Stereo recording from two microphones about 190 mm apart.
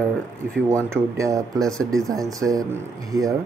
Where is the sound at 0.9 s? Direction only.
15° right (ahead or behind).